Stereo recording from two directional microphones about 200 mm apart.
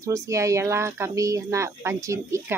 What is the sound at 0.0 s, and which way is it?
Speech, 15° right (ahead or behind).